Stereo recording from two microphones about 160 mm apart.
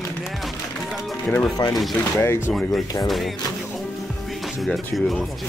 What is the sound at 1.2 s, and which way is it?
Speech, 5° left (ahead or behind).